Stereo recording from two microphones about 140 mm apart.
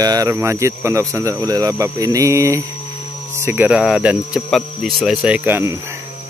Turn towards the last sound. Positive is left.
turn(degrees=-15)  # may be behind; listen again after turning